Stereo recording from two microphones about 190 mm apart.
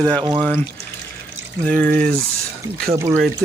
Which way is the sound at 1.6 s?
10° left (ahead or behind).